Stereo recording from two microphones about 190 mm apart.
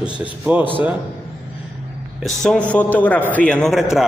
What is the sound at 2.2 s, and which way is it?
A man's voice, 5° left (ahead or behind).